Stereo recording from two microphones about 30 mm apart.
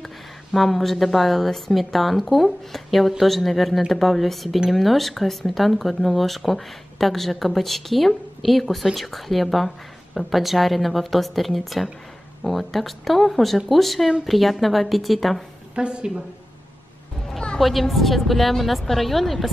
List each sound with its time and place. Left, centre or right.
0.5 s speech: centre
15.7 s a woman's voice: right
17.6 s speech: centre